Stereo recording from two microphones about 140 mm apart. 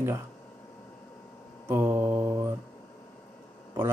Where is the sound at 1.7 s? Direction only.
15° right (ahead or behind).